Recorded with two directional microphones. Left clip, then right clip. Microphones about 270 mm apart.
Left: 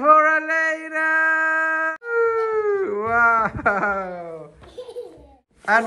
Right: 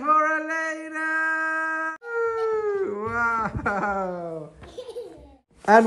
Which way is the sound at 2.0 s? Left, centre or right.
Centre.